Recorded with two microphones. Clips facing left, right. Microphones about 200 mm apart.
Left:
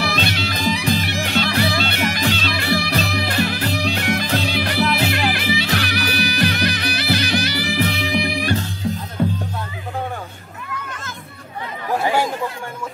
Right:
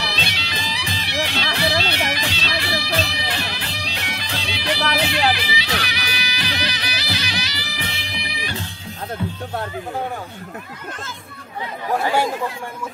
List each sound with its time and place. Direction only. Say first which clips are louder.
0.0 s music: left 7 dB; 50° left (ahead or behind)